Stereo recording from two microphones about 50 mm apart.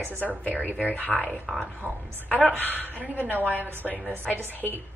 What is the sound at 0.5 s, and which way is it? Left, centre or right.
Speech, right.